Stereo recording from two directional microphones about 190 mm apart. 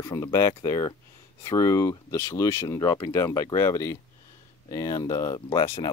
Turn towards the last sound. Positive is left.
turn(degrees=25)  # may be behind; listen again after turning